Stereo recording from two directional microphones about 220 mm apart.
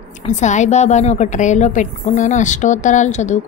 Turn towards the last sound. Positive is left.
turn(degrees=30)  # may be behind; listen again after turning